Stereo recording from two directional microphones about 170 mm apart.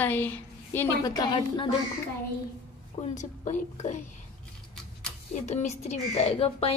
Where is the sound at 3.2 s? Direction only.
45° left (ahead or behind).